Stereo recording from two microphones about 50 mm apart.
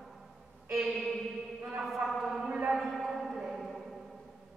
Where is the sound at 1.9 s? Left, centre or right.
Centre.